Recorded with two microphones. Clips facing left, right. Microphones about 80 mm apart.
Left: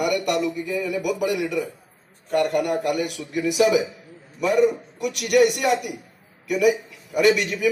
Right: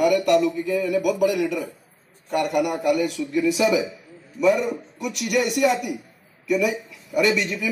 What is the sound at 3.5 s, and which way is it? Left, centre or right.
A man's voice, centre.